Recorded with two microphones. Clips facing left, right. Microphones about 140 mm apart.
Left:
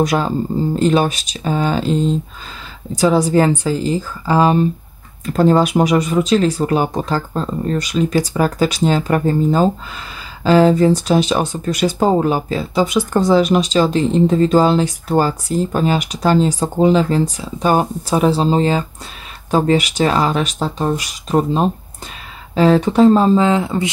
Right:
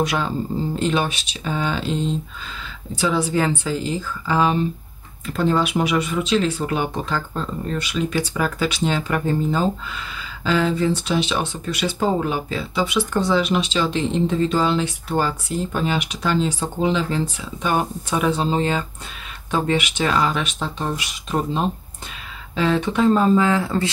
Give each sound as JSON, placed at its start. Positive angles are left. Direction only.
{"t": 0.0, "sound": "speech", "side_deg": 40}